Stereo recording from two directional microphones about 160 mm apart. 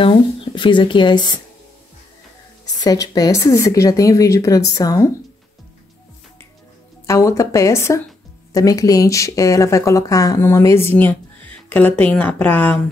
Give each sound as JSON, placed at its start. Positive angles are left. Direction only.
{"t": 0.0, "sound": "speech", "side_deg": 30}
{"t": 2.8, "sound": "speech", "side_deg": 25}
{"t": 7.1, "sound": "speech", "side_deg": 20}